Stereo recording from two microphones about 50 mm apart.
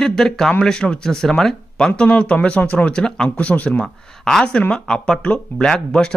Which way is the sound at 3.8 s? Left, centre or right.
Centre.